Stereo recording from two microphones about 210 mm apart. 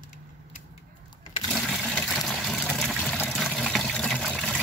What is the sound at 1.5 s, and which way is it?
Water, centre (ahead or behind).